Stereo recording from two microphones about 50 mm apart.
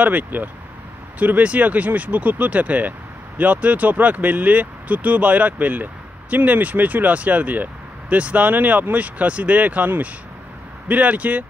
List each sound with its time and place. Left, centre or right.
0.0 s speech: right